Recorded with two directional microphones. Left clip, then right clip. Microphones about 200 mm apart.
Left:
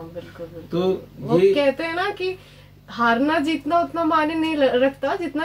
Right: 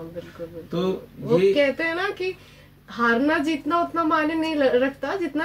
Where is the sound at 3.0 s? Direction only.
15° right (ahead or behind).